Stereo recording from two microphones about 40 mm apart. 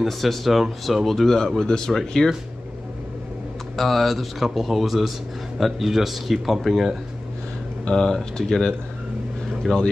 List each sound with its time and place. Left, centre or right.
0.0 s speech: centre
2.0 s speech: centre
3.7 s speech: centre
7.9 s speech: centre